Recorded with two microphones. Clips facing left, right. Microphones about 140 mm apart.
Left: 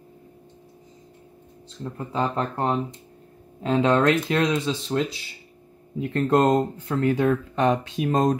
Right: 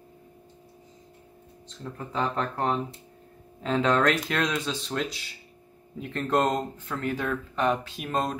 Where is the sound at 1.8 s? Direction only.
30° left (ahead or behind).